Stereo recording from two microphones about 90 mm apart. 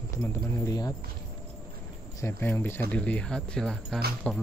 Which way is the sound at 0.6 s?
45° left (ahead or behind).